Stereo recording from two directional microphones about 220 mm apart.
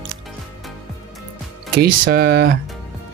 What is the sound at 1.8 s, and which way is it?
Speech, 45° right (ahead or behind).